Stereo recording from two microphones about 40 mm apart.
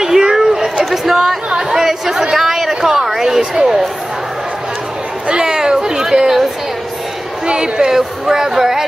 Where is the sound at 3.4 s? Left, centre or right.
Right.